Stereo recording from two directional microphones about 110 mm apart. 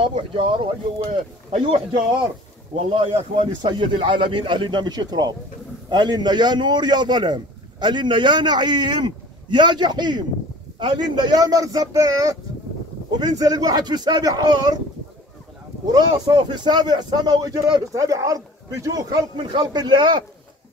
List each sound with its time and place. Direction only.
0.0 s a man's voice: 50° right (ahead or behind)
1.1 s speech: 65° right (ahead or behind)
2.9 s a man's voice: 55° right (ahead or behind); by 14.8 s 35° right (ahead or behind)
15.9 s a man's voice: 40° right (ahead or behind)